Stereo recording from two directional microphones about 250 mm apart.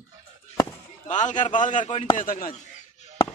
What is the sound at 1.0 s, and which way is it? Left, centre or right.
A man's voice, left.